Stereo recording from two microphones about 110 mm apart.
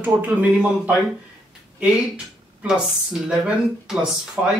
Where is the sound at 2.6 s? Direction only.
5° right (ahead or behind).